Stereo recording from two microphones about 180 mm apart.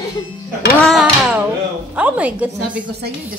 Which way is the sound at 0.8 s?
Centre (ahead or behind).